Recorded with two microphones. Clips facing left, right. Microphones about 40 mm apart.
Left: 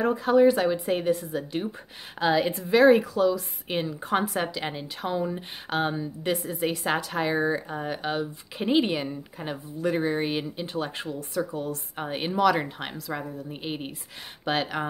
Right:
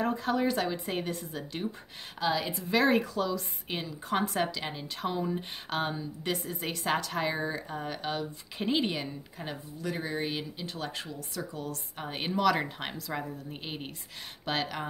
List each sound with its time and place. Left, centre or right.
0.0 s a woman's voice: centre
2.1 s a woman's voice: left
2.7 s a woman's voice: centre
3.8 s a woman's voice: left
4.2 s a woman's voice: centre
6.3 s a woman's voice: centre